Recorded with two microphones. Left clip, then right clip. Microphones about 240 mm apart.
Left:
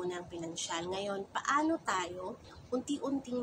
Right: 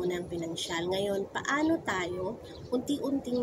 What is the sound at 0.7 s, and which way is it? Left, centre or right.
Speech, centre.